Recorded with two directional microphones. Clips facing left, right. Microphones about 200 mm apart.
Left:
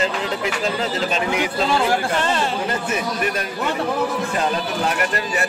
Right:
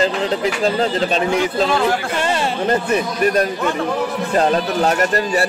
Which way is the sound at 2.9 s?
40° right (ahead or behind).